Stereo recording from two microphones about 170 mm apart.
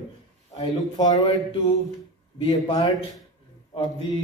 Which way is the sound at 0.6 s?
25° left (ahead or behind).